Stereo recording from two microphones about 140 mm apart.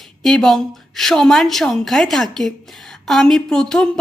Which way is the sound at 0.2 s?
Centre (ahead or behind).